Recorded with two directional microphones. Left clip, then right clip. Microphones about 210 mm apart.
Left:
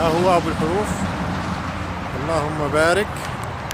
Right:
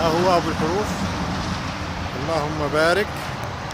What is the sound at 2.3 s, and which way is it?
Speech, 5° left (ahead or behind).